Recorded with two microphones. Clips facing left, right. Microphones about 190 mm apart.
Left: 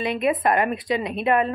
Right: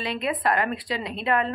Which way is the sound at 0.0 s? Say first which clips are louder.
Left 5 dB; 20° left (ahead or behind).